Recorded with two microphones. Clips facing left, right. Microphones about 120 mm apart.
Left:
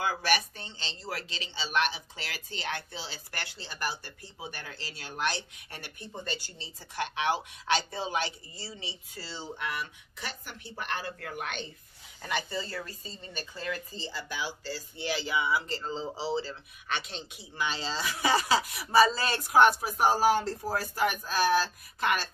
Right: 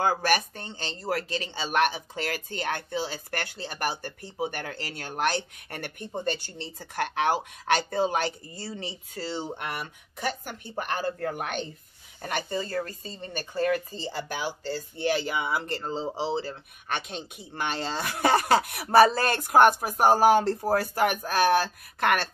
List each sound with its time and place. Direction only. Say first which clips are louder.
0.0 s speech: right 5 dB; 45° right (ahead or behind)
16.0 s speech: right 4 dB; 20° right (ahead or behind)
16.3 s speech: right 2 dB; 55° right (ahead or behind)